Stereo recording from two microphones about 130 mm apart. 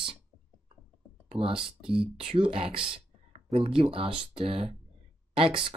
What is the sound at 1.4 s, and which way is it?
Speech, 45° right (ahead or behind).